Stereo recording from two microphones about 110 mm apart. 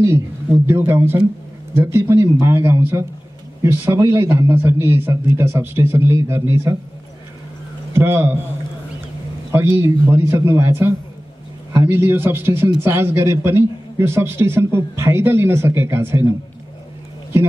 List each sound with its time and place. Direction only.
0.7 s a man's voice: 20° right (ahead or behind)
7.9 s a man's voice: 25° right (ahead or behind)
9.5 s a man's voice: 25° right (ahead or behind)